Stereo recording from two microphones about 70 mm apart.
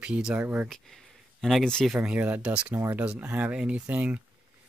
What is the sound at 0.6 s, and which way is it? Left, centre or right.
Speech, centre.